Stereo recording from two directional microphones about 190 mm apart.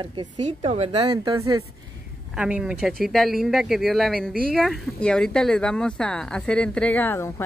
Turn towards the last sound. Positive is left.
turn(degrees=10)  # may be behind; listen again after turning